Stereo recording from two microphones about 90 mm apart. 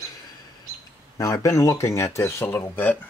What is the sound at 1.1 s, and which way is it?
Speech, 40° left (ahead or behind).